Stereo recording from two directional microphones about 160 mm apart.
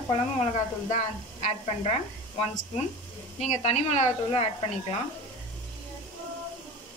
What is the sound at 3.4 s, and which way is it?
Speech, 45° left (ahead or behind).